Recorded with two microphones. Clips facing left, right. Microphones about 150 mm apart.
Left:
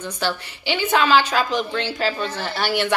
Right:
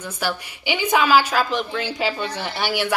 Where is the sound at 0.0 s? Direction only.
10° right (ahead or behind).